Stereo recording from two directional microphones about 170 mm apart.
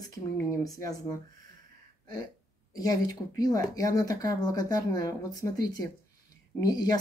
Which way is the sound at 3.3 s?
20° left (ahead or behind).